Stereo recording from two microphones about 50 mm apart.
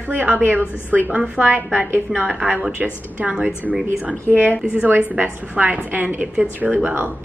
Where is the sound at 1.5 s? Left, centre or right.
Right.